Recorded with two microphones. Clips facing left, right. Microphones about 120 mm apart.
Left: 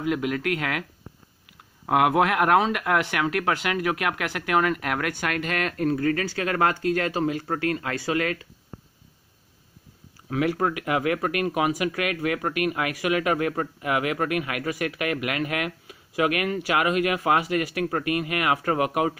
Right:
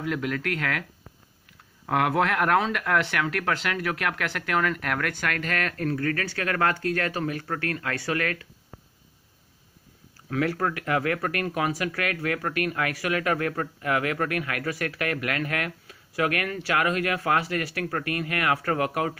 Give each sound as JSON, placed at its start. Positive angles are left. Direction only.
{"t": 0.0, "sound": "speech", "side_deg": 15}
{"t": 1.9, "sound": "speech", "side_deg": 15}
{"t": 10.3, "sound": "speech", "side_deg": 15}